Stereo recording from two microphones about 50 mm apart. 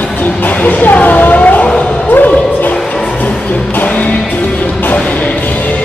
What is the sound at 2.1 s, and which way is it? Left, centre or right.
Music, left.